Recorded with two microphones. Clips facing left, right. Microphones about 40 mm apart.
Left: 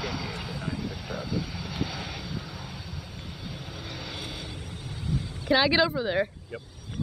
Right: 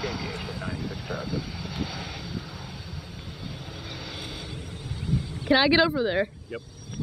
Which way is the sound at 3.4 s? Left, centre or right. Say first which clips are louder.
Right 1 dB; centre.